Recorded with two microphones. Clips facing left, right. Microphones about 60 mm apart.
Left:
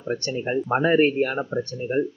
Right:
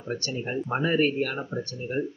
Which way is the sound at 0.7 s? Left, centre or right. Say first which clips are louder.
Left 5 dB; left.